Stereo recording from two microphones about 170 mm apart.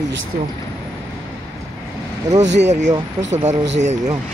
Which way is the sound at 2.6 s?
45° right (ahead or behind).